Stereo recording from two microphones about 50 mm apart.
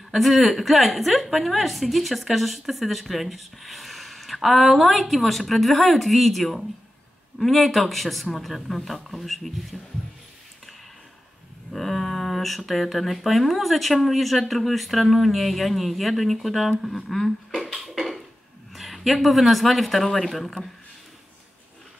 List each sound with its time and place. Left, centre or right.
0.1 s speech: centre
11.7 s speech: centre
17.9 s a sound: centre
18.8 s speech: centre